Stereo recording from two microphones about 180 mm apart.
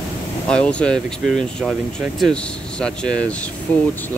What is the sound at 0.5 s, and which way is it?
Speech, 5° left (ahead or behind).